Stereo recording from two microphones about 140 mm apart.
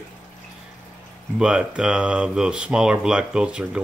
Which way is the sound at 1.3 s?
5° right (ahead or behind).